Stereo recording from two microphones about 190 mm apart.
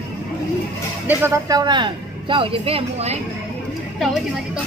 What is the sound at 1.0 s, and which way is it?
Speech, 15° right (ahead or behind).